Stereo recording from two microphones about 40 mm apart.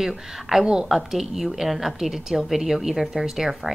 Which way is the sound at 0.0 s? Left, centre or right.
Centre.